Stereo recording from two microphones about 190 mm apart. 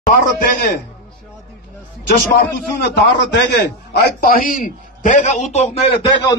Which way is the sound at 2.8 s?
65° left (ahead or behind).